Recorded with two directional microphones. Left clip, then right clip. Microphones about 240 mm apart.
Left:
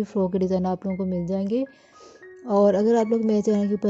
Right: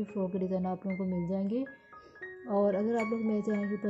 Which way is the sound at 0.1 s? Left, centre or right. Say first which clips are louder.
Left 10 dB; left.